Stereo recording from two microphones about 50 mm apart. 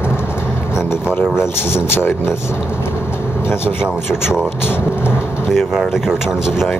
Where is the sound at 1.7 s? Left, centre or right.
Left.